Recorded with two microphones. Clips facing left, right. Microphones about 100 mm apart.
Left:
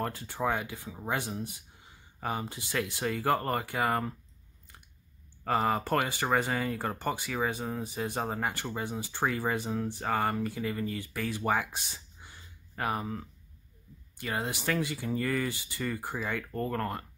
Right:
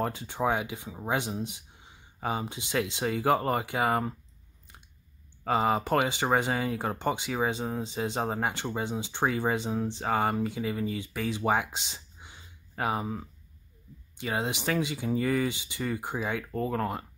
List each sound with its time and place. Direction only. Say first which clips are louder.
0.0 s speech: right 3 dB; 20° right (ahead or behind)
5.4 s speech: right 2 dB; 15° right (ahead or behind)